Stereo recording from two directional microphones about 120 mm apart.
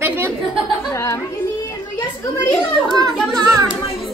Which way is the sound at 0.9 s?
20° left (ahead or behind).